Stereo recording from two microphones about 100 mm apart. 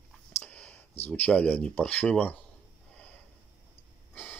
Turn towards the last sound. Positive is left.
turn(degrees=15)  # may be behind; listen again after turning